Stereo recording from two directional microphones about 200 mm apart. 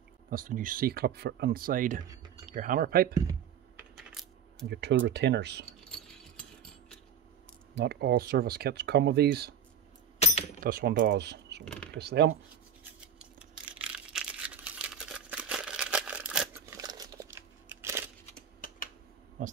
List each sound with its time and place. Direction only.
0.3 s speech: 45° right (ahead or behind)
2.0 s typing: 20° right (ahead or behind)
2.4 s speech: 40° right (ahead or behind)
4.1 s coin: centre (ahead or behind)
4.6 s speech: 60° right (ahead or behind)
7.7 s speech: 55° right (ahead or behind)
10.6 s speech: 45° right (ahead or behind)
11.6 s computer keyboard: 5° left (ahead or behind)
11.9 s speech: 60° right (ahead or behind)
13.2 s a sound: 5° right (ahead or behind)
16.7 s crunch: 20° right (ahead or behind)
19.4 s speech: 40° right (ahead or behind)